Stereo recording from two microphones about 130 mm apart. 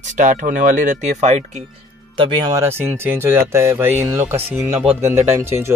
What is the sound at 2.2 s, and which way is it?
Speech, 35° right (ahead or behind).